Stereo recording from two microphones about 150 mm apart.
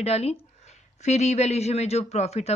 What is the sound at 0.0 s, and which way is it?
Speech, 45° left (ahead or behind).